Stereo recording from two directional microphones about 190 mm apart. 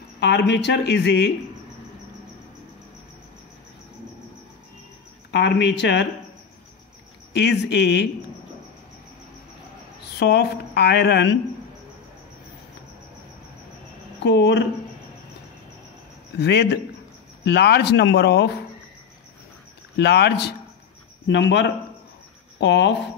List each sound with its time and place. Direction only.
0.2 s speech: 65° left (ahead or behind)
5.3 s speech: 65° left (ahead or behind)
7.3 s speech: 65° left (ahead or behind)
10.1 s speech: 65° left (ahead or behind)
14.2 s speech: 65° left (ahead or behind)
16.3 s speech: 60° left (ahead or behind)
20.0 s speech: 60° left (ahead or behind)